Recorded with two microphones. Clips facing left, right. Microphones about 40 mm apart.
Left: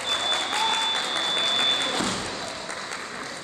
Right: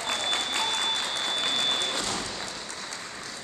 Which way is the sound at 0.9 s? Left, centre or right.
Left.